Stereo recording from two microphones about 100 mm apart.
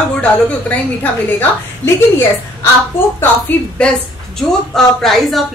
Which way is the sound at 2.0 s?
25° left (ahead or behind).